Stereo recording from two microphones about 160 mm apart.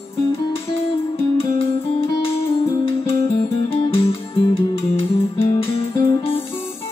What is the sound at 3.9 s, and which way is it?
Music, 35° left (ahead or behind).